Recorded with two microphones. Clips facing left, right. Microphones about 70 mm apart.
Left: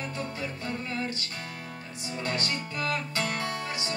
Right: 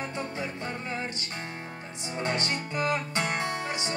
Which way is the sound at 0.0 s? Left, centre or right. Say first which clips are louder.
Right 1 dB; right.